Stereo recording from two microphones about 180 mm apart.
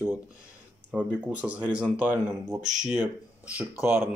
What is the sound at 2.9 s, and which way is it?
Speech, 10° right (ahead or behind).